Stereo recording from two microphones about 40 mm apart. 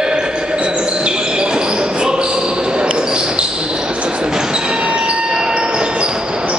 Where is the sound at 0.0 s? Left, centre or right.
Right.